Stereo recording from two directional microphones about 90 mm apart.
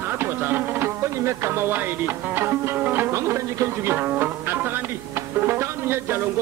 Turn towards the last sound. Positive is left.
turn(degrees=-25)  # may be behind; listen again after turning